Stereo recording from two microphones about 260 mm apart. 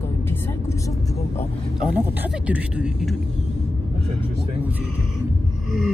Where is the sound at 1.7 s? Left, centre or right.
Centre.